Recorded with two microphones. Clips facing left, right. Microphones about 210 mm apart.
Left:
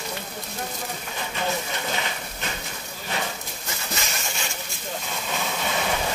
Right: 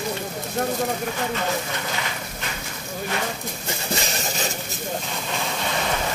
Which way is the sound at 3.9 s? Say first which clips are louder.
Right 5 dB; 35° right (ahead or behind).